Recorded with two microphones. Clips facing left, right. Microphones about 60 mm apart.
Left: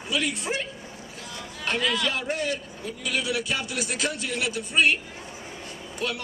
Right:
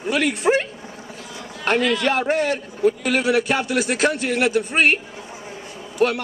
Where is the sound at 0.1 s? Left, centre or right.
Right.